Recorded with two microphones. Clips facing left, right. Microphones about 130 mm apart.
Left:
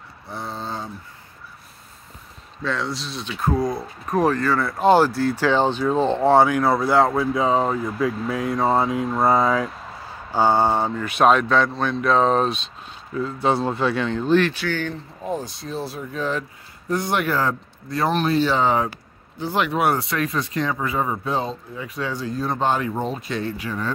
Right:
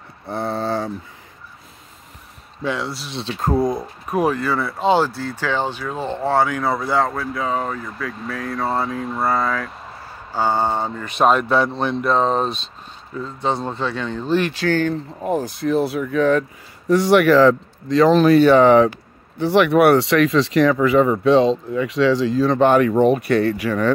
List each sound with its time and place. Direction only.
0.3 s a sound: 60° right (ahead or behind); by 0.9 s 85° right
2.6 s speech: 10° right (ahead or behind)
3.1 s speech: 30° right (ahead or behind)
4.0 s speech: 10° right (ahead or behind)
4.7 s speech: 5° left (ahead or behind)
6.6 s speech: centre (ahead or behind)
7.3 s speech: 20° left (ahead or behind); by 11.7 s 10° right (ahead or behind)
12.0 s speech: centre (ahead or behind)
14.1 s speech: 5° right (ahead or behind)
14.7 s speech: 45° right (ahead or behind)
15.3 s speech: 65° right (ahead or behind)
16.9 s speech: 85° right